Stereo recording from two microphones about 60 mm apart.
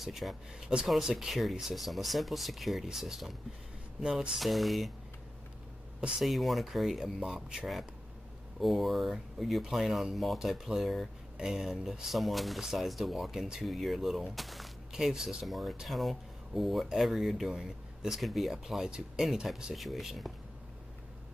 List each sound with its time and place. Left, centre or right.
0.0 s speech: centre
5.9 s speech: centre
6.2 s speech: centre